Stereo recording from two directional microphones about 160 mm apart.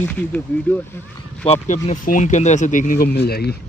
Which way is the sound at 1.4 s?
45° left (ahead or behind).